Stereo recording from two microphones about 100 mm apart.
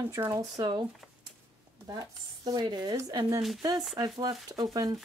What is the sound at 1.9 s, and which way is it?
A woman's voice, 40° right (ahead or behind).